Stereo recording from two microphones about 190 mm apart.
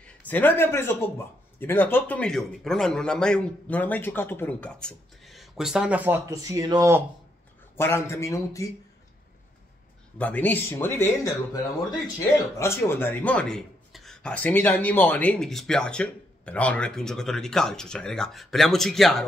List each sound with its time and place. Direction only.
0.0 s a man's voice: 10° left (ahead or behind); by 7.0 s 20° right (ahead or behind)
7.7 s speech: 15° left (ahead or behind)
10.1 s a man's voice: 10° left (ahead or behind)